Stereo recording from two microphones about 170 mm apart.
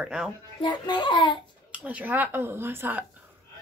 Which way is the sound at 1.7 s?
10° right (ahead or behind).